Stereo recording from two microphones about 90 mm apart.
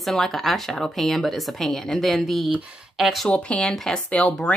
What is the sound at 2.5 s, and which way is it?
Speech, 10° right (ahead or behind).